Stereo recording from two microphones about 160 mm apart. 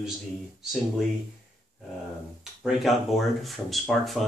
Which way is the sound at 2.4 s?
Centre (ahead or behind).